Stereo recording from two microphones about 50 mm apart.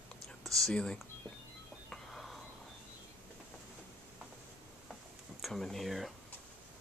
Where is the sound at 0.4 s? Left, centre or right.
Centre.